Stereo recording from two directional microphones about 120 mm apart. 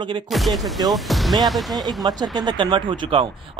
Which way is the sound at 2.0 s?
35° right (ahead or behind).